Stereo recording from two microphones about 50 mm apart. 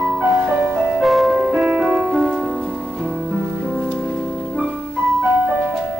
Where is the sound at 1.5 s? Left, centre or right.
Centre.